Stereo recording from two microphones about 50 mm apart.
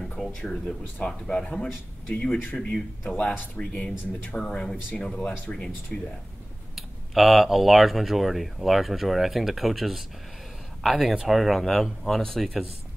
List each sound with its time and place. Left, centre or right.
0.5 s speech: left
3.2 s speech: left
4.4 s speech: centre
6.7 s speech: centre